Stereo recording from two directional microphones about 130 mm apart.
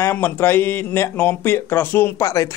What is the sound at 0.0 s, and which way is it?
Speech, 15° left (ahead or behind).